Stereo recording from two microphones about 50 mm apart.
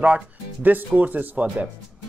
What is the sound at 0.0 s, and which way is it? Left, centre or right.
Speech, right.